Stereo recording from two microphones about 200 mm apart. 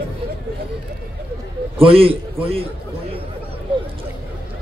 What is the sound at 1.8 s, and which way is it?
Speech, 25° right (ahead or behind).